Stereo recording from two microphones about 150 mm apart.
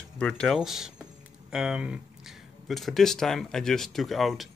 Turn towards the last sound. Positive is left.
turn(degrees=0)  # may be behind; listen again after turning